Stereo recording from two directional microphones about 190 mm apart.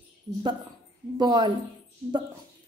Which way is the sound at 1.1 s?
25° right (ahead or behind).